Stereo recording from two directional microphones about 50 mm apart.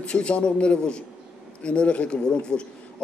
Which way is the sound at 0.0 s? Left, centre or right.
Left.